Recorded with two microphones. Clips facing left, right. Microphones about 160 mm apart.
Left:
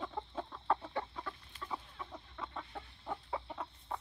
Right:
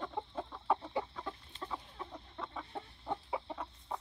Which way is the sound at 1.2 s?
25° right (ahead or behind).